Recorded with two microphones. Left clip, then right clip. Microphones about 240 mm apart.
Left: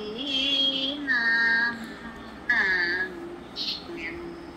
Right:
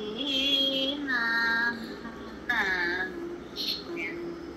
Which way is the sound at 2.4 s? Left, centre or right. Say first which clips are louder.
Left 4 dB; centre.